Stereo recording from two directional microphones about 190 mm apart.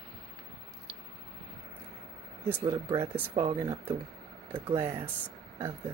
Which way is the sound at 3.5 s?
25° right (ahead or behind).